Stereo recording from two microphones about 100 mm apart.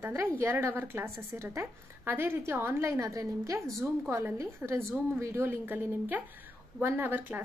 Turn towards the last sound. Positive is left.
turn(degrees=-20)  # may be behind; listen again after turning